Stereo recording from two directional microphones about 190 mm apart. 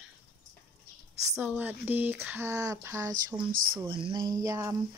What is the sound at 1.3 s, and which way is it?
Speech, 10° right (ahead or behind).